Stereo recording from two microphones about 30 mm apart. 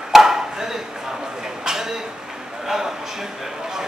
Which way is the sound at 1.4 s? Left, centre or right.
Centre.